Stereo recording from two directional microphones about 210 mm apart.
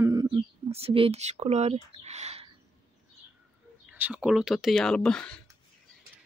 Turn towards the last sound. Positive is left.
turn(degrees=5)  # may be behind; listen again after turning